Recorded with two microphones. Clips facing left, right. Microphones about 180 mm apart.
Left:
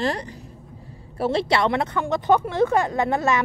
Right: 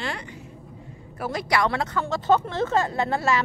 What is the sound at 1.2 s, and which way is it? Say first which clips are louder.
Speech: left 4 dB; 30° left (ahead or behind).